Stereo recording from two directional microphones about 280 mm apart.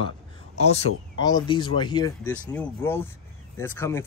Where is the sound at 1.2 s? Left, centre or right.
Centre.